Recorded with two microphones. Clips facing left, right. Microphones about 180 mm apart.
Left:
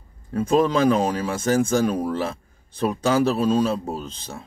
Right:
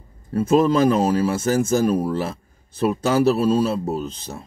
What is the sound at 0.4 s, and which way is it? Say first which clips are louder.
Speech: right 2 dB; 5° right (ahead or behind).